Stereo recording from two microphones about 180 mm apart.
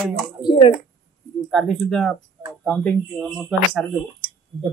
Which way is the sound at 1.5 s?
Centre (ahead or behind).